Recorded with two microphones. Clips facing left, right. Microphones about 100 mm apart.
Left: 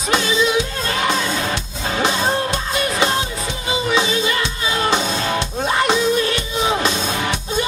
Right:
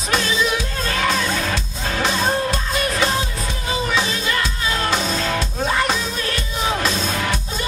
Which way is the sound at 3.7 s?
15° left (ahead or behind).